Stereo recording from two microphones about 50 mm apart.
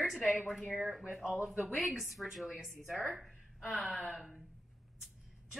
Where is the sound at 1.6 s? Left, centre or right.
Centre.